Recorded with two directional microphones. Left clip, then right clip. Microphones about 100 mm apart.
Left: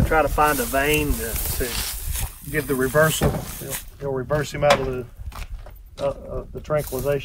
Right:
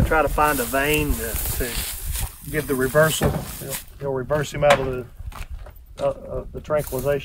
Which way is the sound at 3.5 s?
35° right (ahead or behind).